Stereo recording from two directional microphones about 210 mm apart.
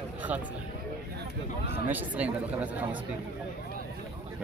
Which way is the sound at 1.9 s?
10° right (ahead or behind).